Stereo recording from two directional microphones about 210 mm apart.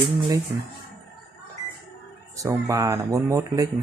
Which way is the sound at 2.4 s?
15° right (ahead or behind).